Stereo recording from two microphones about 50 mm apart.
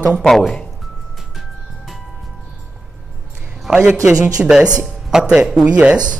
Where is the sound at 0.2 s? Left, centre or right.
Centre.